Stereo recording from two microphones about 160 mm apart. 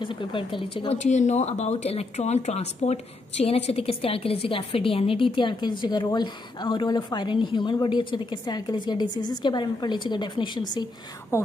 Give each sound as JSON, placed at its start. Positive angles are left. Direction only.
{"t": 0.0, "sound": "speech", "side_deg": 30}
{"t": 0.9, "sound": "speech", "side_deg": 45}
{"t": 11.3, "sound": "speech", "side_deg": 15}